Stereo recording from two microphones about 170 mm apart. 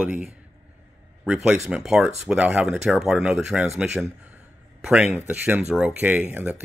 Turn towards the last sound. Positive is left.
turn(degrees=-10)  # may be behind; listen again after turning